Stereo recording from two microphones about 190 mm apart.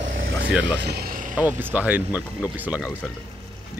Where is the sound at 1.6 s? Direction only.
10° right (ahead or behind).